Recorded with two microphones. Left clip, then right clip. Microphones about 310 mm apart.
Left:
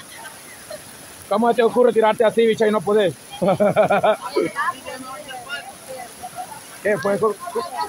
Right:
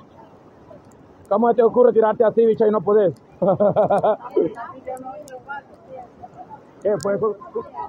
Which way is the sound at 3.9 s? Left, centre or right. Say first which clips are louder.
Left 1 dB; centre.